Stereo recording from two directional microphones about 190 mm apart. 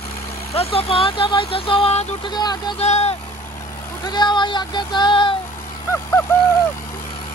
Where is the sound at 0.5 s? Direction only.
30° left (ahead or behind).